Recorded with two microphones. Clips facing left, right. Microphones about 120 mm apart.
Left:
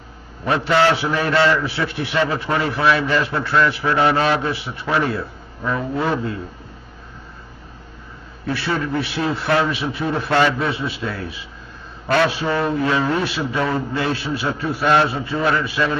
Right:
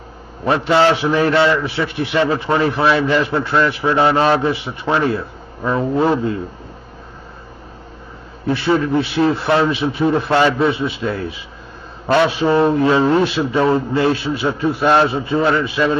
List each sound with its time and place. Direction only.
0.5 s a man's voice: 20° right (ahead or behind)
8.5 s a man's voice: 20° right (ahead or behind)